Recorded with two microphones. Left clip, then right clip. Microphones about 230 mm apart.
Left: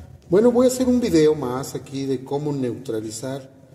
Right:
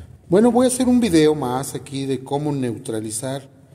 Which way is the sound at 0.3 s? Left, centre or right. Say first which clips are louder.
Even; right.